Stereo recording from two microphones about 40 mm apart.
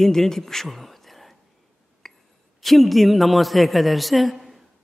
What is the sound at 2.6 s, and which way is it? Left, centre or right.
A man's voice, centre.